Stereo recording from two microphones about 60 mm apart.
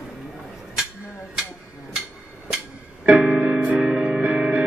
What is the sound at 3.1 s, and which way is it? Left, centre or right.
Music, centre.